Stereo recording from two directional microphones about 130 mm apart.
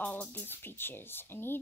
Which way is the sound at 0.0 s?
15° left (ahead or behind).